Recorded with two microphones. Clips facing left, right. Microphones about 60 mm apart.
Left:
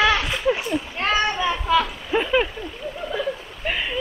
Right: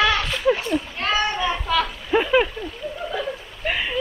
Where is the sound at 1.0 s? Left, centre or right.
Centre.